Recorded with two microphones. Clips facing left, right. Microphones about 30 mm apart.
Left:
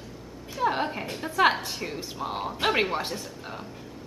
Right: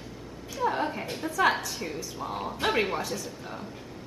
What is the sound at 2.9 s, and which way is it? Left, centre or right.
Speech, left.